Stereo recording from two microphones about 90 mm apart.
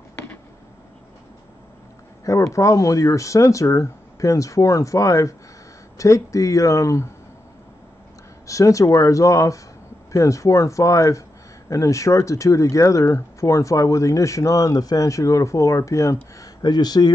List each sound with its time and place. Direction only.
2.2 s speech: 35° left (ahead or behind)
8.5 s speech: 35° left (ahead or behind)
16.3 s speech: 50° left (ahead or behind)